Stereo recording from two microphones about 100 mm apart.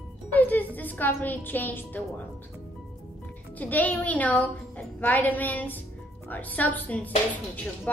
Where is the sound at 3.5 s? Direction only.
15° left (ahead or behind).